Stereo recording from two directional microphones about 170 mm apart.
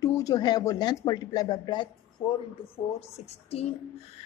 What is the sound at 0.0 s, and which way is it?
Speech, 20° left (ahead or behind).